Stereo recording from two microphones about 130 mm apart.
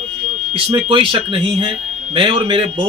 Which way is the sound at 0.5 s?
45° right (ahead or behind).